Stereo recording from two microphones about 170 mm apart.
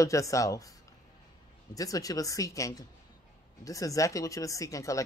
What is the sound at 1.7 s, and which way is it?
A woman's voice, 20° left (ahead or behind).